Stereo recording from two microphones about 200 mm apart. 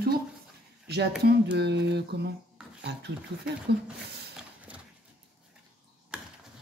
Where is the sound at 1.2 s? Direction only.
55° right (ahead or behind).